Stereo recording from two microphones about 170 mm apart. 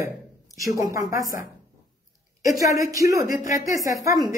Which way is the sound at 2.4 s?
20° right (ahead or behind).